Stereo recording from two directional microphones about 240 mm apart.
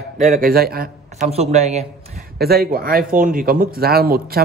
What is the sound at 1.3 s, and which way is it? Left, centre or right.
Speech, right.